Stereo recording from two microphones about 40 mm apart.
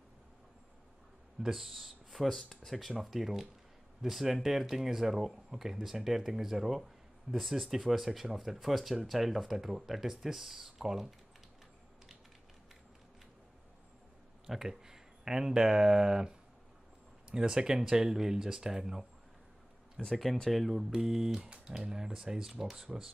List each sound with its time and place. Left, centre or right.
1.4 s speech: centre
2.9 s speech: centre
14.4 s speech: centre
20.0 s speech: centre
20.5 s speech: centre
20.9 s speech: centre